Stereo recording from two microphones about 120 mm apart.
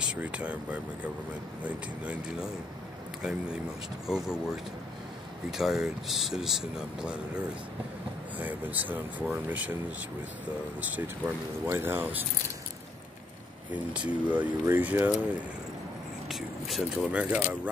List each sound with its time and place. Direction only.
0.0 s speech: 10° right (ahead or behind)
3.2 s speech: 5° right (ahead or behind)
5.5 s speech: 5° right (ahead or behind)
10.8 s speech: 15° right (ahead or behind)
13.9 s speech: 10° right (ahead or behind)
16.3 s speech: centre (ahead or behind)